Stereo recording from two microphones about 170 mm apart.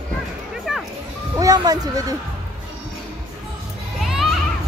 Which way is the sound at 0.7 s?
Centre (ahead or behind).